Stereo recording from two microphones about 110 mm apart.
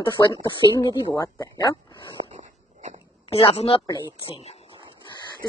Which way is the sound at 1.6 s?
40° left (ahead or behind).